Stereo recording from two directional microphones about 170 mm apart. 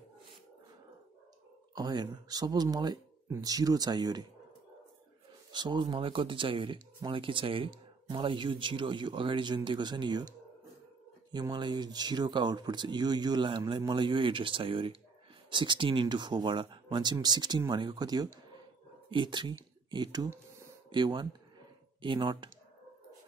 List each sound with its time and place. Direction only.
1.8 s speech: 25° right (ahead or behind)
5.5 s speech: 25° right (ahead or behind)
11.3 s speech: 25° right (ahead or behind)